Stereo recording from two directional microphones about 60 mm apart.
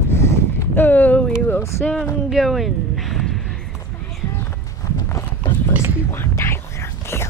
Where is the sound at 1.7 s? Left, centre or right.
Left.